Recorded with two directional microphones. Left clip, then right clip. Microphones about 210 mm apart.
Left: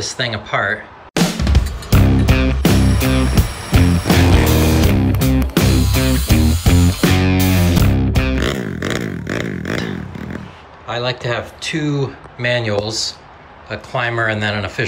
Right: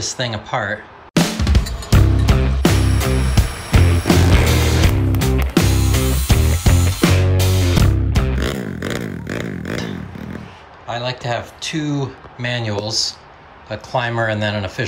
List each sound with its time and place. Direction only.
0.0 s speech: 15° right (ahead or behind)
1.1 s music: centre (ahead or behind)
10.9 s speech: 10° right (ahead or behind)